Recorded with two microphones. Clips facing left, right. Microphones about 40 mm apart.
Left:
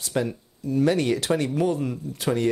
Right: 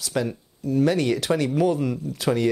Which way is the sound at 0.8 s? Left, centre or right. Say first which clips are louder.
Even; right.